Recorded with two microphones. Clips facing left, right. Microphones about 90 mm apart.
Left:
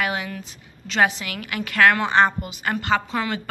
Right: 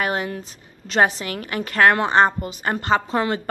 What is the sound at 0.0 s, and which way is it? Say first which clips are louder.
A woman's voice: right 2 dB; 40° right (ahead or behind).